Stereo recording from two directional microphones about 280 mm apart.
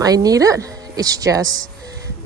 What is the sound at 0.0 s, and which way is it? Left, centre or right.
A woman's voice, centre.